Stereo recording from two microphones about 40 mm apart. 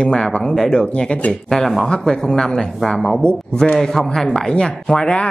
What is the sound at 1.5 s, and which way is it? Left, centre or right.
Speech, centre.